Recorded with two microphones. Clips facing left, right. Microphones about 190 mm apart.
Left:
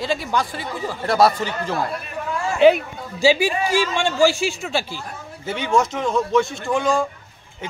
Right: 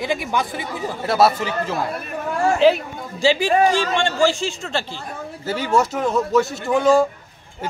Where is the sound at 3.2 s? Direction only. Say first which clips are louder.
Right 2 dB; 10° left (ahead or behind).